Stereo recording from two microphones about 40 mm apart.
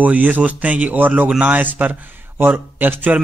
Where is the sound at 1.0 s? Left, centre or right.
Right.